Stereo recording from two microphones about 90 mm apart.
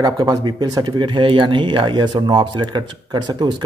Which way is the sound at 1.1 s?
70° right (ahead or behind).